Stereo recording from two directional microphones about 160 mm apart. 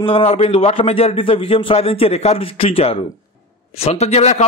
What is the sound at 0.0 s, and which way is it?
A man's voice, 35° left (ahead or behind).